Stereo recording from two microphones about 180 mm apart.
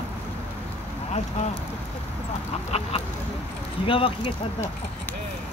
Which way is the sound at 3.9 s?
30° left (ahead or behind).